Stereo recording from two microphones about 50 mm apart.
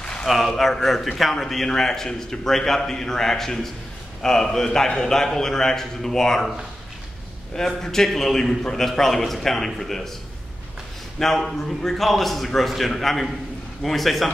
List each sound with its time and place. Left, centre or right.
0.0 s a sound: centre
0.3 s a man's voice: centre
7.5 s a man's voice: centre
11.1 s a man's voice: centre